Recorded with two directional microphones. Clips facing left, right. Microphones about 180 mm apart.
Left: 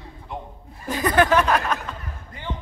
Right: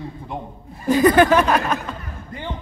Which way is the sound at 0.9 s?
Centre (ahead or behind).